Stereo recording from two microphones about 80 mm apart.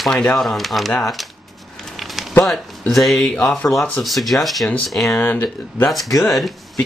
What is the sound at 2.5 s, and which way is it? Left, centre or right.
Speech, centre.